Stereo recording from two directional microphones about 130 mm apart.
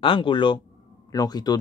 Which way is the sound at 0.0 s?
40° left (ahead or behind).